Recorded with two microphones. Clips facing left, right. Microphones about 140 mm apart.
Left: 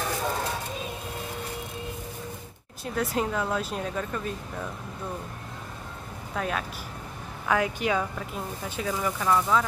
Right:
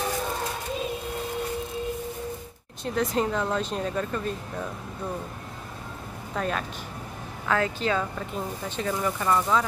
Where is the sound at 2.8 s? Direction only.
5° left (ahead or behind).